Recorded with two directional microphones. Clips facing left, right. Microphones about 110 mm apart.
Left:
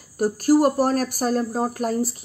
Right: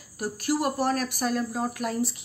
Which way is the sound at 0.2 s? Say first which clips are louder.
Left 9 dB; 40° left (ahead or behind).